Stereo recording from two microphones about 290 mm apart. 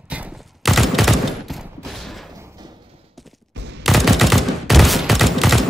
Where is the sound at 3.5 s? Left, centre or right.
Right.